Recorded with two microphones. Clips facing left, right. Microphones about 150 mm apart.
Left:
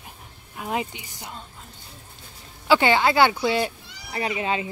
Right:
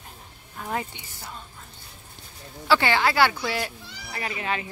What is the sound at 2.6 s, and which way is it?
A child's voice, 20° left (ahead or behind).